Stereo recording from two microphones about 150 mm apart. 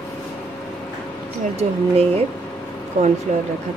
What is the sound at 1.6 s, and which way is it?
Speech, 40° right (ahead or behind).